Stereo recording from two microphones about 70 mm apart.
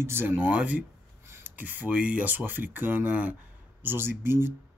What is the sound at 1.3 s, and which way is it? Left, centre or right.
Speech, right.